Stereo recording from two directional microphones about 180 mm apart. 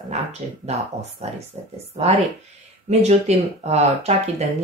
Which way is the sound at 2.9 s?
40° right (ahead or behind).